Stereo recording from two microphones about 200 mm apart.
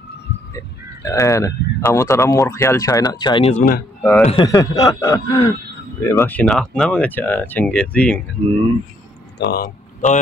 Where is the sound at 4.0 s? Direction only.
5° left (ahead or behind).